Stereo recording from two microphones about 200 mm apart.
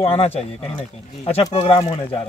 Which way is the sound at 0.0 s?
30° left (ahead or behind).